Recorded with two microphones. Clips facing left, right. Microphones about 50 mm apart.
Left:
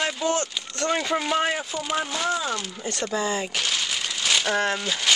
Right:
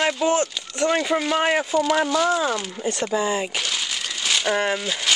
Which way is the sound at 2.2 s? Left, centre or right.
Centre.